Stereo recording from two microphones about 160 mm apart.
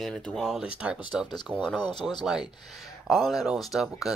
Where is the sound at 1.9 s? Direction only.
25° left (ahead or behind).